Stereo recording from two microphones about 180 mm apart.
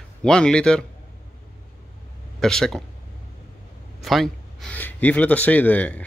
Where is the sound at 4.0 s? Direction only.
Centre (ahead or behind).